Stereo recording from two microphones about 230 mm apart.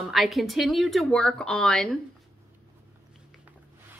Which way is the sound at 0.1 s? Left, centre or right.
Centre.